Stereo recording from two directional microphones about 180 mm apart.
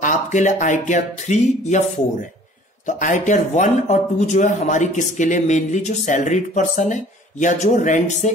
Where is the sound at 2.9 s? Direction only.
45° left (ahead or behind).